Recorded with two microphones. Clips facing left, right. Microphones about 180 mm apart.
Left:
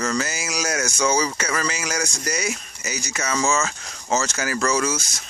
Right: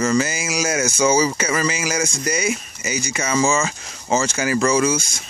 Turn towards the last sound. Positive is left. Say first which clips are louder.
# right 5 dB
turn(degrees=0)  # may be behind; listen again after turning